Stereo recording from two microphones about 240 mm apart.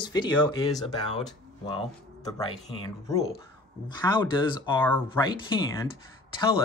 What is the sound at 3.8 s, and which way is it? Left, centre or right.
Speech, centre.